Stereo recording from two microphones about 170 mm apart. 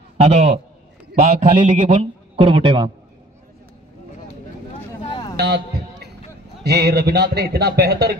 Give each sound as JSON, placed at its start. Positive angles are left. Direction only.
{"t": 0.2, "sound": "a man's voice", "side_deg": -40}
{"t": 6.6, "sound": "a man's voice", "side_deg": -75}